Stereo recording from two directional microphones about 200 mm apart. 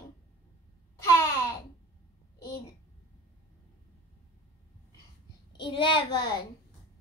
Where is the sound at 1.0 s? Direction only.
15° left (ahead or behind).